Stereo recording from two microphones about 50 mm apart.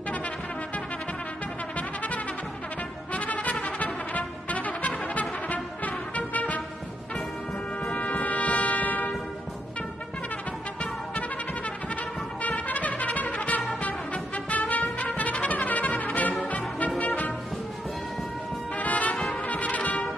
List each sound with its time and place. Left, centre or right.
1.8 s trumpet: left
3.1 s brass instrument: left
7.8 s brass instrument: left
11.9 s trumpet: left
17.0 s music: left
18.8 s music: left
19.1 s music: centre
19.4 s brass instrument: left